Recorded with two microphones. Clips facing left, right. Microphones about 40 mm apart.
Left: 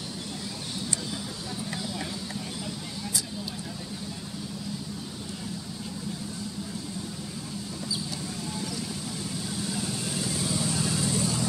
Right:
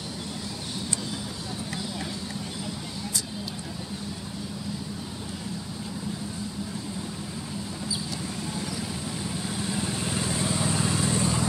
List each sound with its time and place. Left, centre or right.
9.7 s vehicle: right